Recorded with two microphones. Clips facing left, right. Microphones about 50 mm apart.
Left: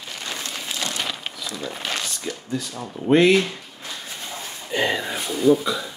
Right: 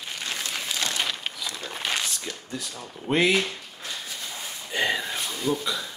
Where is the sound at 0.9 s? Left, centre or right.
Centre.